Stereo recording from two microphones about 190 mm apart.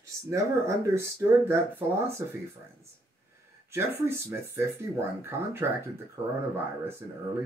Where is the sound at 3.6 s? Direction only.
15° right (ahead or behind).